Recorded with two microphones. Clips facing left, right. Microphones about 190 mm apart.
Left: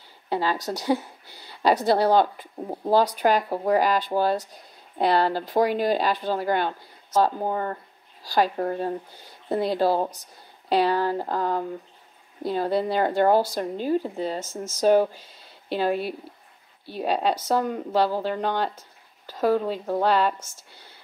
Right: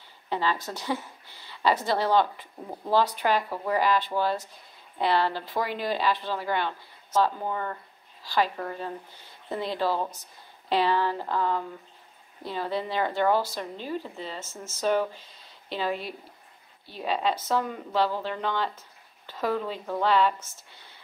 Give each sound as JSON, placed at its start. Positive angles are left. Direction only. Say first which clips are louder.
{"t": 0.3, "sound": "a woman's voice", "louder": "left 3 dB", "side_deg": 40}
{"t": 14.5, "sound": "speech", "louder": "left 8 dB", "side_deg": 90}
{"t": 14.8, "sound": "a woman's voice", "louder": "left 7 dB", "side_deg": 40}
{"t": 17.0, "sound": "a woman's voice", "louder": "left 3 dB", "side_deg": 45}